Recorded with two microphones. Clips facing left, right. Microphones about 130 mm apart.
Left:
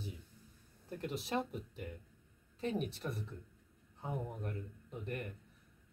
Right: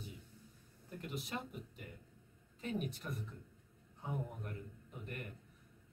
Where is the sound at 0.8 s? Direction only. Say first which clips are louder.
Left 5 dB; 30° left (ahead or behind).